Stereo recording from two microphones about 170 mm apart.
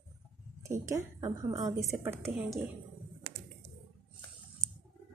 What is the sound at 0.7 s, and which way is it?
Speech, 20° right (ahead or behind).